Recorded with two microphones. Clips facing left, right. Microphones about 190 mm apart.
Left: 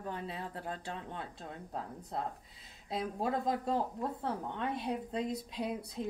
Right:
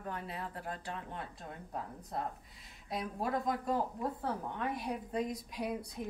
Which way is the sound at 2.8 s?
25° left (ahead or behind).